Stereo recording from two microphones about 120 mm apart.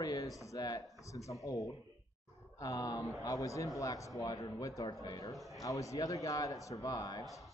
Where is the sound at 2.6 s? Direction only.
30° left (ahead or behind).